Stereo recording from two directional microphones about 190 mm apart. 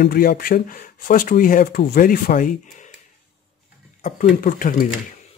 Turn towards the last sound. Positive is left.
turn(degrees=45)  # may be behind; listen again after turning